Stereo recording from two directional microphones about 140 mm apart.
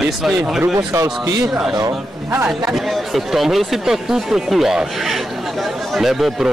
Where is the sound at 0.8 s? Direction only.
25° right (ahead or behind).